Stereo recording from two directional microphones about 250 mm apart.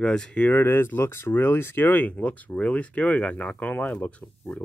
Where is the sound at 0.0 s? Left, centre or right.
Centre.